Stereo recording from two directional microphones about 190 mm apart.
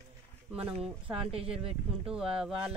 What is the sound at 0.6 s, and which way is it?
Speech, 10° right (ahead or behind).